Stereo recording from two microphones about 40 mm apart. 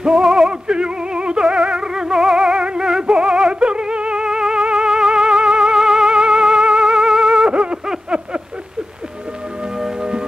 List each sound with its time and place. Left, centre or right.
0.0 s music: centre
0.5 s music: right
7.8 s a sound: centre
9.8 s music: centre